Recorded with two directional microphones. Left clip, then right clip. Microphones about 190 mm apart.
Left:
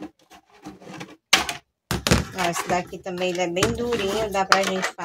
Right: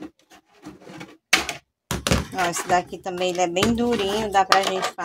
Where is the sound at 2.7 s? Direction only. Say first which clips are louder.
Right 3 dB; 50° right (ahead or behind).